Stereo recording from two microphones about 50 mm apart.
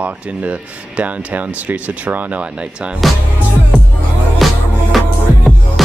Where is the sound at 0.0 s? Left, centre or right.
Right.